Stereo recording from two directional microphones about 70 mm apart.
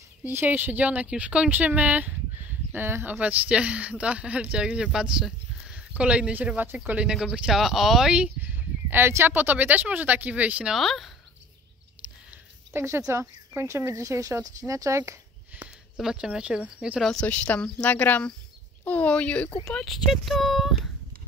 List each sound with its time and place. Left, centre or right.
0.2 s speech: right
3.2 s speech: centre
8.9 s speech: right; by 10.7 s centre
10.7 s speech: centre
12.7 s speech: right
14.4 s speech: right
16.0 s speech: centre
17.0 s speech: centre
19.7 s speech: centre